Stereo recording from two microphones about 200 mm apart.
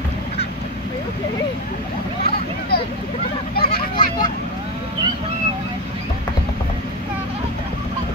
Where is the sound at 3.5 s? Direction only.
50° left (ahead or behind).